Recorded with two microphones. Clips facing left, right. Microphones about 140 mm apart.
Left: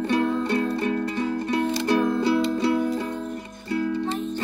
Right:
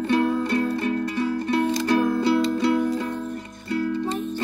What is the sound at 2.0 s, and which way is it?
Music, 5° right (ahead or behind).